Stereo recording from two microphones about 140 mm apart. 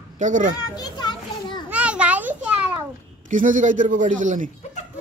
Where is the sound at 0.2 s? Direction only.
65° right (ahead or behind).